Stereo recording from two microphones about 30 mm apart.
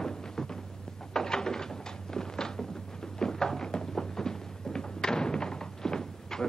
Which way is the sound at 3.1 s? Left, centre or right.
Centre.